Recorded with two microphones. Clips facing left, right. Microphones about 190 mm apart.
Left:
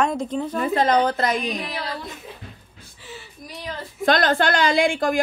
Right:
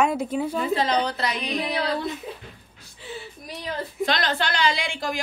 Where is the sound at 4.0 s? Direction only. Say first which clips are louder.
Left 7 dB; 50° left (ahead or behind).